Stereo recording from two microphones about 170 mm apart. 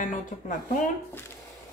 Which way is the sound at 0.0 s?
50° left (ahead or behind).